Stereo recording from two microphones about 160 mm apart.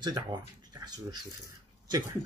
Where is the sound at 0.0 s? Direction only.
25° right (ahead or behind).